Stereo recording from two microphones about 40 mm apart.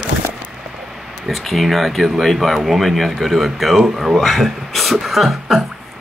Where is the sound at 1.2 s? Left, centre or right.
Centre.